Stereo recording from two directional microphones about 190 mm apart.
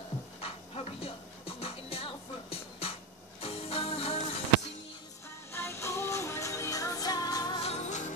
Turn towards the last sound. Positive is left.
turn(degrees=35)  # may be behind; listen again after turning